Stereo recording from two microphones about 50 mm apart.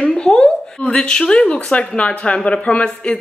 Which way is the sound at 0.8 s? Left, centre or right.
Centre.